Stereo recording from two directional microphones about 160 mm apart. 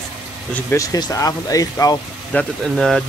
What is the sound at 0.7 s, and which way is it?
Speech, 20° left (ahead or behind).